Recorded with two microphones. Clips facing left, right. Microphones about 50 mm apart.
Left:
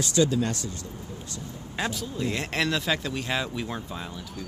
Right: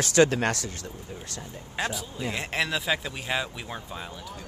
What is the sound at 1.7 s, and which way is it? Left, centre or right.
Speech, centre.